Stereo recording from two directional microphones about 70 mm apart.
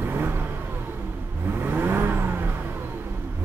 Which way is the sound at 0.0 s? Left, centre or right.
Right.